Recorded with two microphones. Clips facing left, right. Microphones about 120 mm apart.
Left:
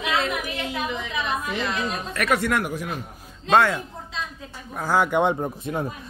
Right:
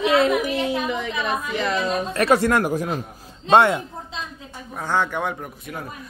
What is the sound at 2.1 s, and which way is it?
Speech, 30° right (ahead or behind).